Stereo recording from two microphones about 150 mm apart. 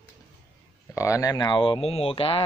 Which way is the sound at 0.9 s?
20° left (ahead or behind).